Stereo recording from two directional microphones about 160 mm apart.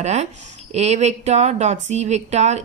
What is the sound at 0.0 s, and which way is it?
Speech, 45° right (ahead or behind).